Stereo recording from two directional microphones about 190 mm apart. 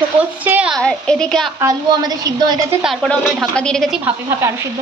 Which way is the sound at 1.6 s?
20° right (ahead or behind).